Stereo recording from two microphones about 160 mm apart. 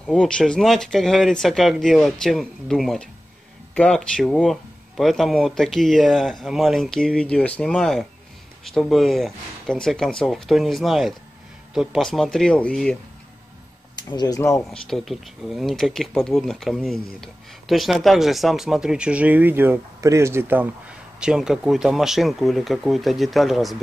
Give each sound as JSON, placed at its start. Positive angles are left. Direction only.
{"t": 0.0, "sound": "speech", "side_deg": 5}
{"t": 13.9, "sound": "speech", "side_deg": 25}
{"t": 14.7, "sound": "speech", "side_deg": 0}